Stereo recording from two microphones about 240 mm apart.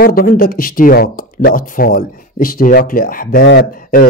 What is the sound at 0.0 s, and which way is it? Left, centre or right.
Speech, left.